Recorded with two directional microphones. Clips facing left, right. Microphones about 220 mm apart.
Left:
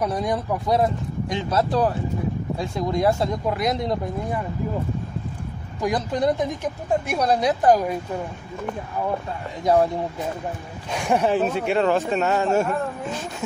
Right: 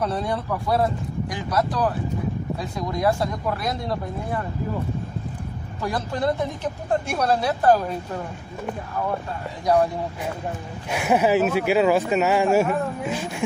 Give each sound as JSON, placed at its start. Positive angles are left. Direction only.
{"t": 0.0, "sound": "speech", "side_deg": 15}
{"t": 5.8, "sound": "speech", "side_deg": 15}
{"t": 10.9, "sound": "speech", "side_deg": -5}